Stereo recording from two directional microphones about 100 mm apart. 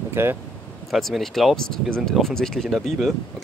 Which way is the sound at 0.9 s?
Centre (ahead or behind).